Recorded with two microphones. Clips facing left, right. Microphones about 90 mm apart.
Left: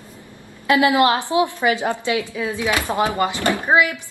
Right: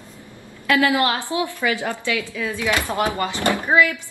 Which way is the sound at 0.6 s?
20° left (ahead or behind).